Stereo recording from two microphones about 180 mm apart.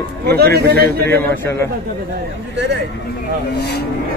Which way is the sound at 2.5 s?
75° right (ahead or behind).